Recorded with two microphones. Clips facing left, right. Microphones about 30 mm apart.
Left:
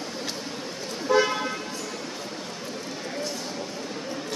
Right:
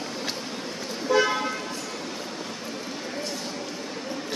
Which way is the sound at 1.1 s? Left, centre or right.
Centre.